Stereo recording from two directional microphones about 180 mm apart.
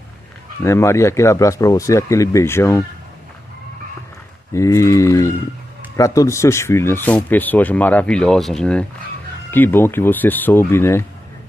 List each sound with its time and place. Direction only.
0.6 s speech: 15° left (ahead or behind)
4.5 s speech: 15° left (ahead or behind)